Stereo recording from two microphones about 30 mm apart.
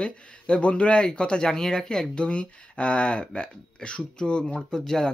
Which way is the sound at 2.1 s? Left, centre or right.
Left.